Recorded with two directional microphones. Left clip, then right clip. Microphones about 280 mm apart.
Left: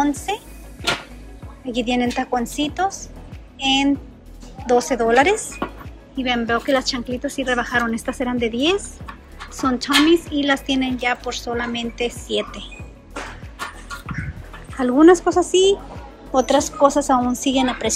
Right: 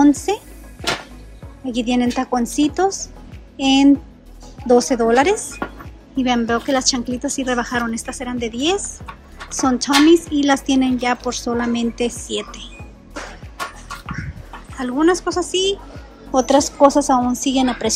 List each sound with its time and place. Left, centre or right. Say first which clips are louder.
0.0 s speech: right 6 dB; centre
1.7 s a woman's voice: right 1 dB; centre
5.4 s speech: even; centre
6.1 s a woman's voice: right 2 dB; centre
14.8 s a woman's voice: left 5 dB; centre